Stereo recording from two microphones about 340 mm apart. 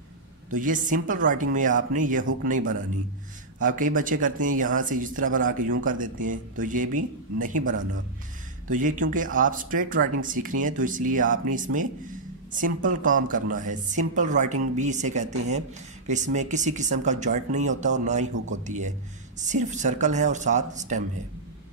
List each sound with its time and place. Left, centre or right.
0.5 s speech: right
3.5 s speech: right